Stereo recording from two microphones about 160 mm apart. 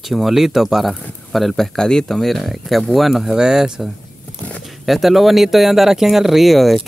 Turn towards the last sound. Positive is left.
turn(degrees=0)  # may be behind; listen again after turning